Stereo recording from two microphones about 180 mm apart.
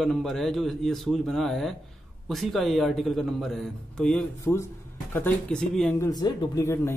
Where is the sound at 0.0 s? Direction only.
Centre (ahead or behind).